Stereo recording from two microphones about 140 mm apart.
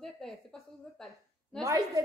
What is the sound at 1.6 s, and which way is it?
Speech, 20° right (ahead or behind).